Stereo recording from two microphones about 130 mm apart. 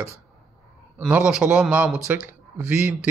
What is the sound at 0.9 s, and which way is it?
A man's voice, 10° right (ahead or behind).